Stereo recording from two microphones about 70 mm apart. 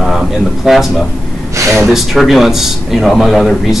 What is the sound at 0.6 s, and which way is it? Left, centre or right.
Speech, centre.